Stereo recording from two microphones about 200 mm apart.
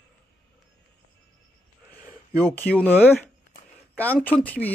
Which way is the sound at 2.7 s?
10° left (ahead or behind).